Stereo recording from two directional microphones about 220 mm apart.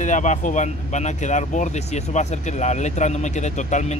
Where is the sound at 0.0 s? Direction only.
35° left (ahead or behind).